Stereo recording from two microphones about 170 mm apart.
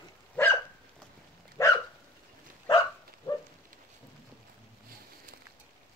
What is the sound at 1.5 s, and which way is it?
Dog, 20° left (ahead or behind).